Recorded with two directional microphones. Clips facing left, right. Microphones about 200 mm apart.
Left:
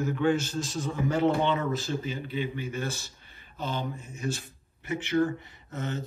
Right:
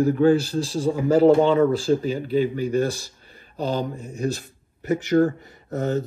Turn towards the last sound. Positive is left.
turn(degrees=-40)  # may be behind; listen again after turning